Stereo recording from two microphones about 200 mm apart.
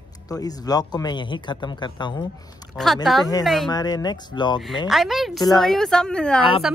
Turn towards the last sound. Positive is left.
turn(degrees=5)  # may be behind; listen again after turning